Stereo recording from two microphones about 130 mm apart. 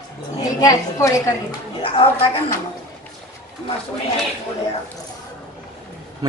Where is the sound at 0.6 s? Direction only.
25° left (ahead or behind).